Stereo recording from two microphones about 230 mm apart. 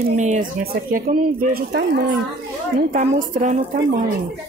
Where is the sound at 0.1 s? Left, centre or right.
Right.